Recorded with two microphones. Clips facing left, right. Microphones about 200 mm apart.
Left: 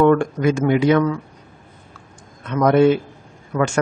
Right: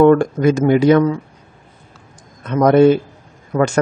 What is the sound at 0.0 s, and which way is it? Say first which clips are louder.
A man's voice: right 4 dB; 40° right (ahead or behind).